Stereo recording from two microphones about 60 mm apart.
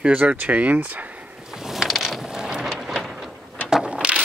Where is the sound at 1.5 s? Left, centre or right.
Centre.